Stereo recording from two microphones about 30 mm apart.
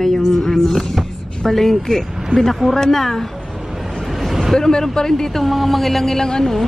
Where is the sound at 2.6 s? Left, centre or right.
Centre.